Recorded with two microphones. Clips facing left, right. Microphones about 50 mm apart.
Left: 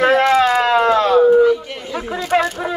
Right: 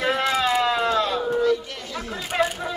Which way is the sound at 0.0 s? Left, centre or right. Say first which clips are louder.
Left 9 dB; left.